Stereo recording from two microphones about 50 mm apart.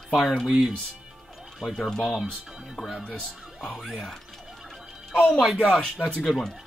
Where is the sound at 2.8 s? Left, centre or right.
Centre.